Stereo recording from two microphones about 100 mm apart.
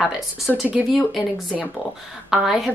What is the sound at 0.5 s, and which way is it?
Speech, 5° left (ahead or behind).